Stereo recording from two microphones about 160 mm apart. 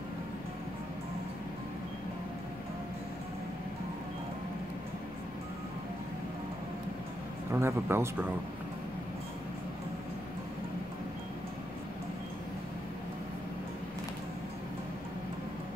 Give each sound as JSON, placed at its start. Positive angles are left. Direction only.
{"t": 7.5, "sound": "speech", "side_deg": -15}